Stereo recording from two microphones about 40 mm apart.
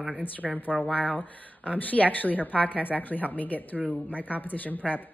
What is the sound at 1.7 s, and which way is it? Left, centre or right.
A woman's voice, left.